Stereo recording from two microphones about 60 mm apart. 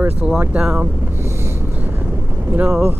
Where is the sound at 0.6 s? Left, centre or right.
Centre.